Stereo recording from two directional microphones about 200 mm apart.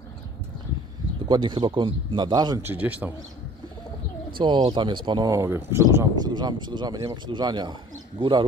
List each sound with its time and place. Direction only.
1.2 s speech: 25° right (ahead or behind)
2.7 s a man's voice: 10° right (ahead or behind)
4.4 s speech: 25° right (ahead or behind)